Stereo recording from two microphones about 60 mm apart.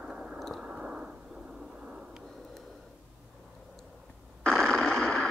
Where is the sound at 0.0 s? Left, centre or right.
Centre.